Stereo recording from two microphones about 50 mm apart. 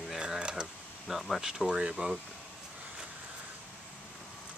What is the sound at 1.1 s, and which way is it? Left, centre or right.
Speech, centre.